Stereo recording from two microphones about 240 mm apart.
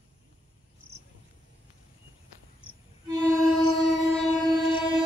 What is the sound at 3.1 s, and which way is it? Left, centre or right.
Music, centre.